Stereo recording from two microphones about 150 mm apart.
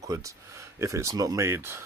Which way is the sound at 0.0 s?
20° right (ahead or behind).